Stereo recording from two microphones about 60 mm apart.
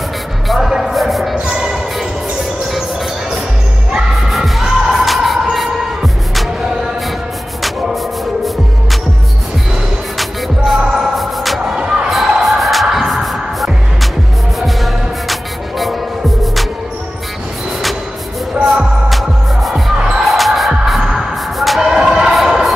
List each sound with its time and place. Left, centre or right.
0.5 s music: centre
1.3 s a sound: centre
3.9 s music: centre
10.1 s music: centre
11.7 s music: centre
12.1 s basketball bounce: centre
12.9 s music: centre
18.7 s music: centre
22.3 s a sound: centre